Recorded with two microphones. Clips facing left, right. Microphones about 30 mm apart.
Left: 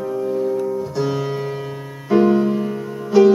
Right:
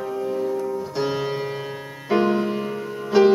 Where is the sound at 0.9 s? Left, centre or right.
Right.